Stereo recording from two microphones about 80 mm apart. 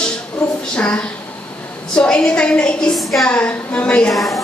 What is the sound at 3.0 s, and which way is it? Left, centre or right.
Speech, centre.